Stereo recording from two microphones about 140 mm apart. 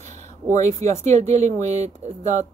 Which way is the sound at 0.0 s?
55° right (ahead or behind).